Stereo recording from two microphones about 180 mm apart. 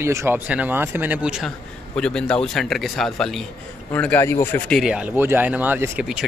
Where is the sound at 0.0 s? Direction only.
15° right (ahead or behind); by 4.7 s 10° left (ahead or behind).